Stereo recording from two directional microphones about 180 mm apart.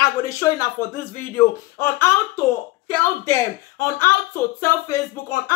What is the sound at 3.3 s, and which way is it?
Speech, 15° left (ahead or behind).